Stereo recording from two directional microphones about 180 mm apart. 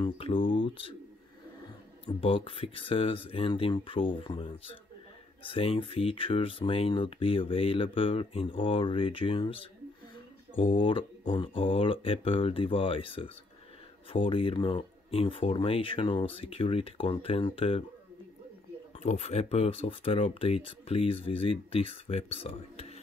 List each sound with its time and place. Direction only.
0.0 s speech: 30° left (ahead or behind)
2.1 s speech: 30° left (ahead or behind)
18.9 s speech: 35° left (ahead or behind)